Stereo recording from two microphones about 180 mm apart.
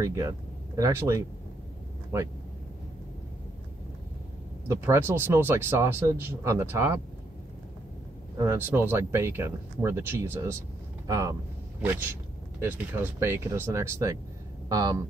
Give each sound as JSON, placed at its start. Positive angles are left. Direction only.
{"t": 0.0, "sound": "speech", "side_deg": -15}
{"t": 4.6, "sound": "speech", "side_deg": -15}
{"t": 8.4, "sound": "speech", "side_deg": -10}